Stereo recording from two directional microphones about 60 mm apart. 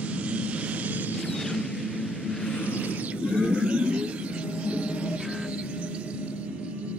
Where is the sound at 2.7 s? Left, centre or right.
Right.